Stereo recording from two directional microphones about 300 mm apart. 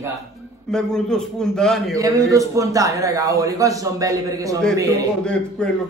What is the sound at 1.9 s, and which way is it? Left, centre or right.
A man's voice, centre.